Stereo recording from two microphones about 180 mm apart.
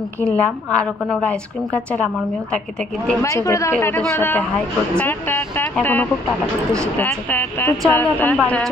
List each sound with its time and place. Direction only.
0.2 s a woman's voice: 5° left (ahead or behind)
3.1 s a woman's voice: 15° left (ahead or behind)